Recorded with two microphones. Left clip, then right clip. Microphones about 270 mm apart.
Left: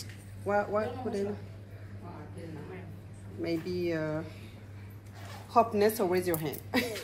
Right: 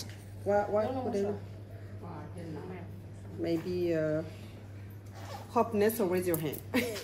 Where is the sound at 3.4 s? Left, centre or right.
Centre.